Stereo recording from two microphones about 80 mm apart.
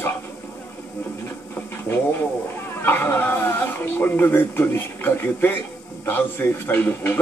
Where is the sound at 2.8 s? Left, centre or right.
Left.